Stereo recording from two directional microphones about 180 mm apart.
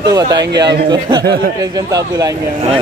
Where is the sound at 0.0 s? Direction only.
25° right (ahead or behind).